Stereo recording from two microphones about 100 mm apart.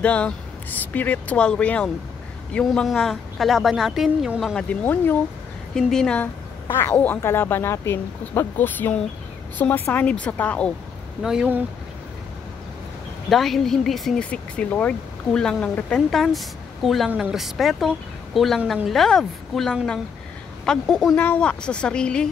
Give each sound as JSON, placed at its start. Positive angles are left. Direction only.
{"t": 0.0, "sound": "speech", "side_deg": 15}
{"t": 4.6, "sound": "speech", "side_deg": 15}
{"t": 5.8, "sound": "speech", "side_deg": 5}
{"t": 6.1, "sound": "speech", "side_deg": 20}
{"t": 13.3, "sound": "speech", "side_deg": 0}
{"t": 21.2, "sound": "speech", "side_deg": 15}